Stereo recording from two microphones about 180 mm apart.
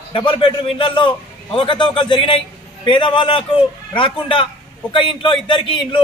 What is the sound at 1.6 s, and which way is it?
A man's voice, 25° left (ahead or behind).